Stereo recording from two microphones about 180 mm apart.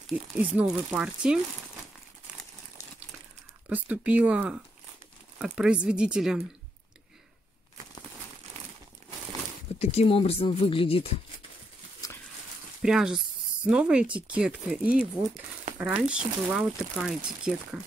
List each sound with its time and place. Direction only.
0.0 s speech: 5° right (ahead or behind)
3.6 s speech: 5° right (ahead or behind)
9.8 s speech: 40° left (ahead or behind)
12.8 s speech: 5° right (ahead or behind)